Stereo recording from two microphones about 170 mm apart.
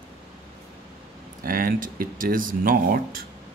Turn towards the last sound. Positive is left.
turn(degrees=-55)  # may be behind; listen again after turning